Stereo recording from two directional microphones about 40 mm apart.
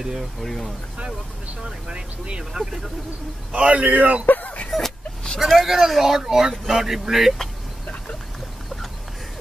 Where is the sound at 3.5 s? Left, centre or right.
Right.